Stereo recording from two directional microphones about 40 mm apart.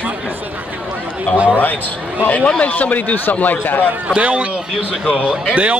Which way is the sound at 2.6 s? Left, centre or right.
Left.